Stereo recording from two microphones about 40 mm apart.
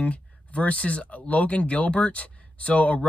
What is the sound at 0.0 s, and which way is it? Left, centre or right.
Speech, left.